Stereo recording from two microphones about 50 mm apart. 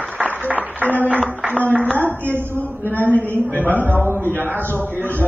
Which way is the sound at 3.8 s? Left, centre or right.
Right.